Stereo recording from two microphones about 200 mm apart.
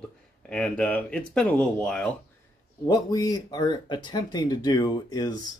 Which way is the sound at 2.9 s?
20° left (ahead or behind).